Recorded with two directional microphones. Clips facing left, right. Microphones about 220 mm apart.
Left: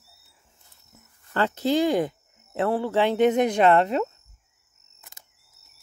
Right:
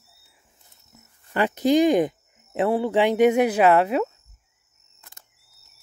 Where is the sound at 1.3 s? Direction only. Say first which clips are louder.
Right 4 dB; 15° right (ahead or behind).